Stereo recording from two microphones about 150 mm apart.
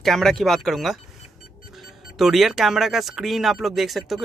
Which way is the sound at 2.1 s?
Centre (ahead or behind).